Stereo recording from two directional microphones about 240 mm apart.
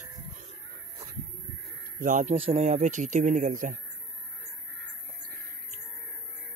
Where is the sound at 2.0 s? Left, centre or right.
Right.